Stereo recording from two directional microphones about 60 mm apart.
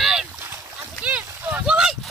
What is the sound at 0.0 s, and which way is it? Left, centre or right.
Boat, centre.